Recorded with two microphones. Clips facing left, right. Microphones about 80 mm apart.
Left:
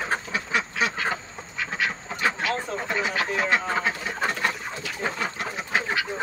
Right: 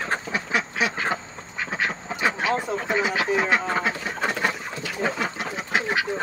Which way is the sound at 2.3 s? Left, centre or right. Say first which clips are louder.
Right 3 dB; centre.